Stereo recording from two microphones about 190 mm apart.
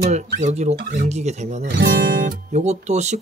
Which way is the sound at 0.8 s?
50° right (ahead or behind).